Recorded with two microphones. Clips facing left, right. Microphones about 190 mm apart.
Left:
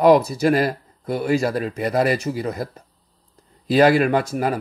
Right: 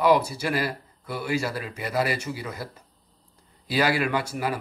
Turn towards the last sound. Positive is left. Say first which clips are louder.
# left 7 dB
turn(degrees=45)  # may be behind; listen again after turning